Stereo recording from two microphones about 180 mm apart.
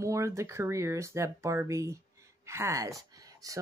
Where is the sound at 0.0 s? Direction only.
15° right (ahead or behind).